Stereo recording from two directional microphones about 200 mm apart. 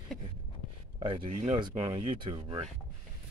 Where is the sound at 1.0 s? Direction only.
25° right (ahead or behind).